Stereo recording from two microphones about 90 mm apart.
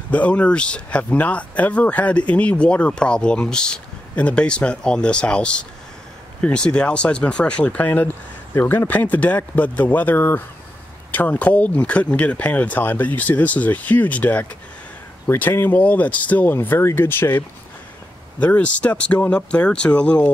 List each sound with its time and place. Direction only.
0.1 s speech: 15° left (ahead or behind)
16.5 s speech: 30° left (ahead or behind); by 20.2 s 15° left (ahead or behind)